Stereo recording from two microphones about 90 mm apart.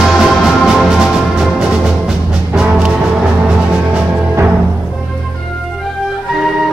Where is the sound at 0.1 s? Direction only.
Centre (ahead or behind).